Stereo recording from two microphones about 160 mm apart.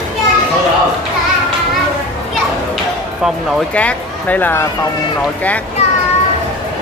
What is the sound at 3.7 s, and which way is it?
Speech, 10° left (ahead or behind).